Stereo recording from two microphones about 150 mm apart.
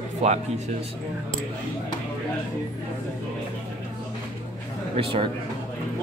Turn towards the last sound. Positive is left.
turn(degrees=-40)  # may be behind; listen again after turning